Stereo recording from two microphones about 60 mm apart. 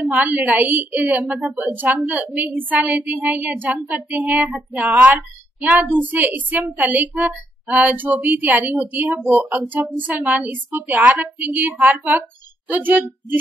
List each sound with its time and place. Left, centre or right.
0.0 s a woman's voice: right